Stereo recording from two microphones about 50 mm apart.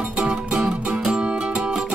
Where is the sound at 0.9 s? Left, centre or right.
Centre.